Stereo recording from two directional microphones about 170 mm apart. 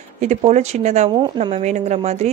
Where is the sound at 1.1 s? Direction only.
25° right (ahead or behind).